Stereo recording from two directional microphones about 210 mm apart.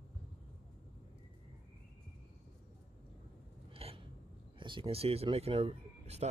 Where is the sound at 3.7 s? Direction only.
30° right (ahead or behind).